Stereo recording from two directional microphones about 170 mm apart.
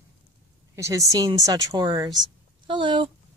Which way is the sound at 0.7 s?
20° right (ahead or behind).